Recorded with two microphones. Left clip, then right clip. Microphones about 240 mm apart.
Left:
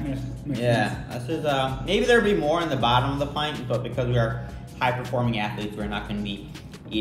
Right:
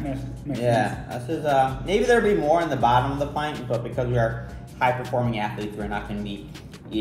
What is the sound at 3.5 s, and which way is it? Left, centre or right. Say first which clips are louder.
Speech: right 1 dB; centre.